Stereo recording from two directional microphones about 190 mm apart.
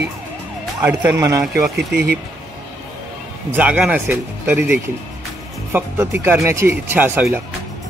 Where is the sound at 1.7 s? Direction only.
55° right (ahead or behind).